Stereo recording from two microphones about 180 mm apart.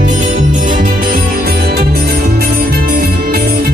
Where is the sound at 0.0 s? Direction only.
45° right (ahead or behind).